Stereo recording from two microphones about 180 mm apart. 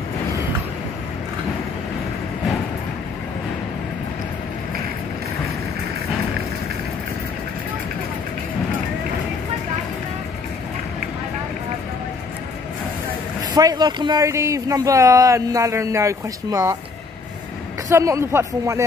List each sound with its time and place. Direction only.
13.6 s speech: 20° right (ahead or behind)
17.8 s speech: 15° right (ahead or behind)